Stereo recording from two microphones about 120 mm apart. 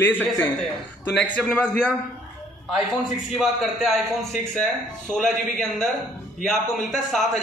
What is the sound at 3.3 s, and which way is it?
A man's voice, centre (ahead or behind).